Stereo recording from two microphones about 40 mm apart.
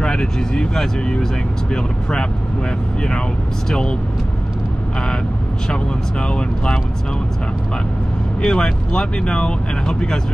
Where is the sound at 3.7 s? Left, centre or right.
Left.